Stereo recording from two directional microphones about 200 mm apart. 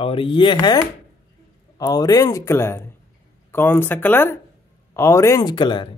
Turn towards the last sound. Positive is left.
turn(degrees=25)  # may be behind; listen again after turning